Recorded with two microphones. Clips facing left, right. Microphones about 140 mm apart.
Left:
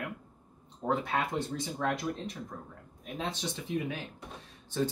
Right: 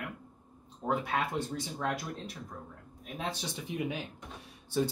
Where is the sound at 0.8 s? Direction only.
5° right (ahead or behind).